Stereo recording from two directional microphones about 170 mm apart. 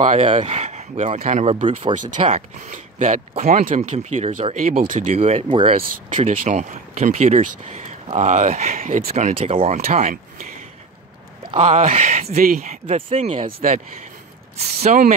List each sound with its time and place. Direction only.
0.4 s speech: 40° right (ahead or behind)
5.1 s speech: 35° right (ahead or behind)
6.4 s speech: 45° right (ahead or behind)
9.4 s speech: 30° right (ahead or behind)
9.8 s speech: 50° right (ahead or behind)
11.6 s speech: 40° right (ahead or behind)
12.9 s speech: 35° right (ahead or behind)
14.8 s speech: 45° right (ahead or behind)